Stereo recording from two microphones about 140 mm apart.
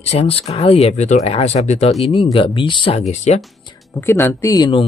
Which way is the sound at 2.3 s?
35° left (ahead or behind).